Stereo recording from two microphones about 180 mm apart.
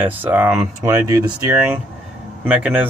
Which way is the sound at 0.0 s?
10° right (ahead or behind).